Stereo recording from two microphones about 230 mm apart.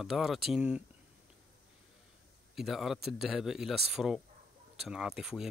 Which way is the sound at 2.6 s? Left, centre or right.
Centre.